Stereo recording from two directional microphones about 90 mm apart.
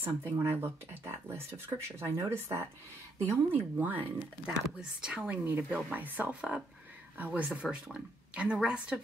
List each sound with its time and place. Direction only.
0.0 s speech: 25° right (ahead or behind)